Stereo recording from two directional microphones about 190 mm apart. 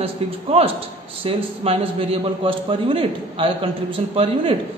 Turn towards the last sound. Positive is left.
turn(degrees=-30)  # may be behind; listen again after turning